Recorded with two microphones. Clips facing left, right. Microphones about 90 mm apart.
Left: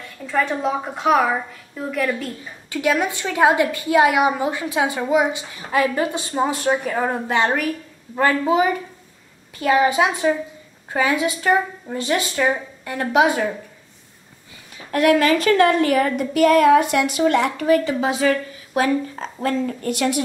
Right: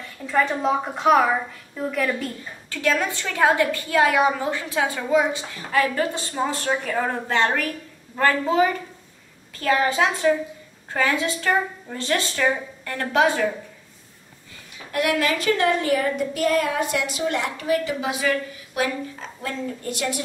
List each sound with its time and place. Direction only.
0.3 s a woman's voice: centre (ahead or behind)
2.7 s a woman's voice: 15° left (ahead or behind)
14.9 s a woman's voice: 45° left (ahead or behind)
15.8 s a woman's voice: 65° left (ahead or behind)
17.8 s a woman's voice: 40° left (ahead or behind)
19.8 s a woman's voice: 60° left (ahead or behind)